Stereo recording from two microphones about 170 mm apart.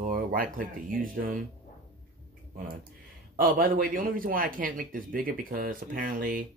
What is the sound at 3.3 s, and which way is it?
Speech, 55° right (ahead or behind).